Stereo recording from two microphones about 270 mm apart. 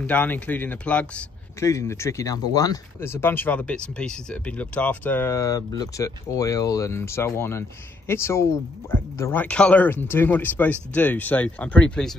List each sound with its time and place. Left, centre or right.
0.0 s a man's voice: centre